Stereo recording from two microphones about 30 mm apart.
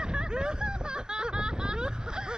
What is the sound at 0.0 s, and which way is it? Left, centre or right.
Snicker, right.